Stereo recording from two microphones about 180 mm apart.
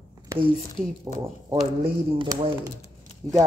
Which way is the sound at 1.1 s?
20° right (ahead or behind).